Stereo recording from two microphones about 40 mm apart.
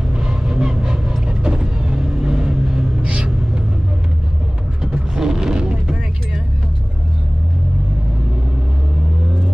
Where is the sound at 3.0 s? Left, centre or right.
Right.